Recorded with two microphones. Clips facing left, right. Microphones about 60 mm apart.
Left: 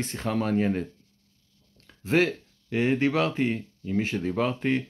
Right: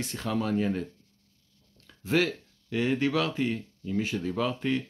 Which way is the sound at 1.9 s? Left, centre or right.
Left.